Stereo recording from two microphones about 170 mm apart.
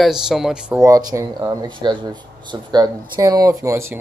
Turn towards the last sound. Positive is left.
turn(degrees=-15)  # may be behind; listen again after turning